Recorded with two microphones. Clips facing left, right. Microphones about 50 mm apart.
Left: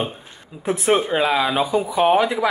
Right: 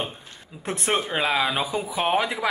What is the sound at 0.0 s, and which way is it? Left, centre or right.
Speech, centre.